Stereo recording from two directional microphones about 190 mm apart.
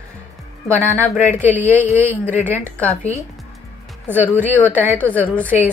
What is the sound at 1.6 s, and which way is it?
Speech, 40° left (ahead or behind).